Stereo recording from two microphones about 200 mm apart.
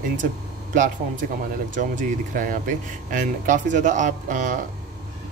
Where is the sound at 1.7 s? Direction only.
40° right (ahead or behind).